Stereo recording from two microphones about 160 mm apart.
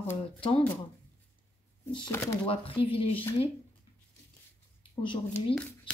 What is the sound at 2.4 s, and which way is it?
Speech, 35° left (ahead or behind).